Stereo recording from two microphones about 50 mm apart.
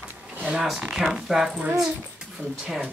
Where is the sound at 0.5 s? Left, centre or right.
Centre.